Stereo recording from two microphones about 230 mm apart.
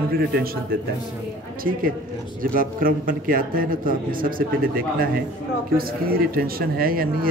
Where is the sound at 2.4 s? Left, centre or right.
Right.